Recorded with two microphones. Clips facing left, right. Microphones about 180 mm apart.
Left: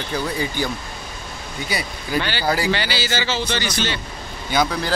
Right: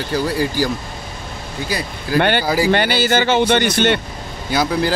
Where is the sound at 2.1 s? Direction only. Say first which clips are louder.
Right 6 dB; 60° right (ahead or behind).